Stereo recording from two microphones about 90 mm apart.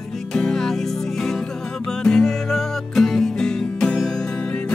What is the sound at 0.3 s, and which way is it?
Music, 5° left (ahead or behind).